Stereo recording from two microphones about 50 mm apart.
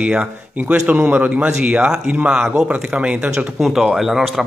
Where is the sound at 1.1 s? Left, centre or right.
Right.